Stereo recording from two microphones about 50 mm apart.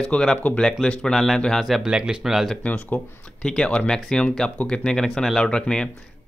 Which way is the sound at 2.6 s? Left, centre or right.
Left.